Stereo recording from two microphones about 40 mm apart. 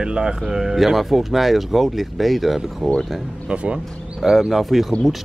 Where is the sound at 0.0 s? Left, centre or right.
Right.